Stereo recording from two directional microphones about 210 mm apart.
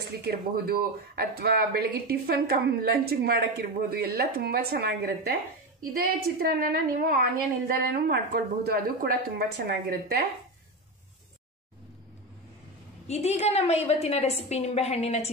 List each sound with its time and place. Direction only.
0.2 s speech: 50° right (ahead or behind)
13.1 s a woman's voice: 30° left (ahead or behind)